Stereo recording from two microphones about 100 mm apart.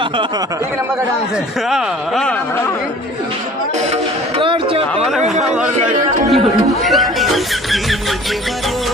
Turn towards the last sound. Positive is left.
turn(degrees=0)  # may be behind; listen again after turning